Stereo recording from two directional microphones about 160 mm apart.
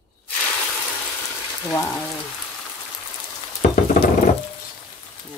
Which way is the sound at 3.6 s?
50° left (ahead or behind).